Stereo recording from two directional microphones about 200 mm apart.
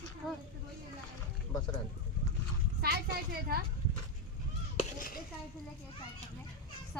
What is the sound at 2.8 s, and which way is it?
Speech, 50° right (ahead or behind).